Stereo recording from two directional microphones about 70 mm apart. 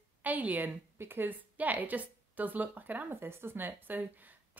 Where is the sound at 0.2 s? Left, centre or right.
Right.